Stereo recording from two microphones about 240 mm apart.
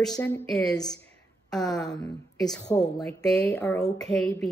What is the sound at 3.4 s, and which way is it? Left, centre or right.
Speech, centre.